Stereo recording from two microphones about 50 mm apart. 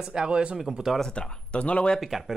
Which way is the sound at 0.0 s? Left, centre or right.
Centre.